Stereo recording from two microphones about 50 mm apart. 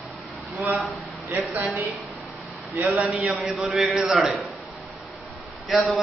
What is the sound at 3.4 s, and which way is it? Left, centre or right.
Speech, centre.